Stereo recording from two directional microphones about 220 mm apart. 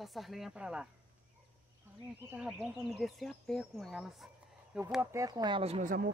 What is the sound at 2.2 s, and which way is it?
Speech, 5° right (ahead or behind).